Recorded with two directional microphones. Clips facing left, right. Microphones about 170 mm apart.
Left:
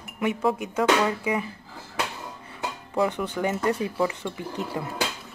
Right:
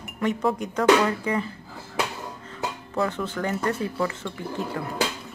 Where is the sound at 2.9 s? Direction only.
15° left (ahead or behind).